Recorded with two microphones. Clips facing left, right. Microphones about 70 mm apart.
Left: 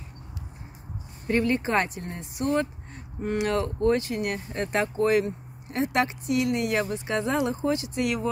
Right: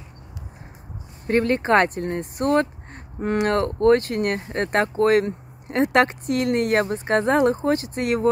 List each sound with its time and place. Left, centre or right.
1.2 s speech: right